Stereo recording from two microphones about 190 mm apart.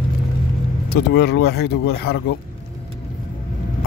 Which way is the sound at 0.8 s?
60° left (ahead or behind).